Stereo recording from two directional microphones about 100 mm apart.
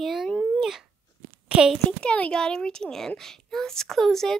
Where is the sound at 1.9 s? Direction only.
10° left (ahead or behind).